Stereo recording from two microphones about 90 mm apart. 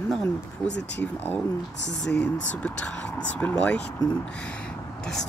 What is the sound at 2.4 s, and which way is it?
Speech, 15° left (ahead or behind).